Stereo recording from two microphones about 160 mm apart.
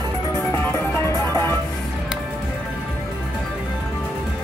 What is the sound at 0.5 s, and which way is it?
Music, 15° left (ahead or behind).